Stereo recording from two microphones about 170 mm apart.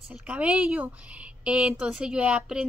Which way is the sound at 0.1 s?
5° right (ahead or behind).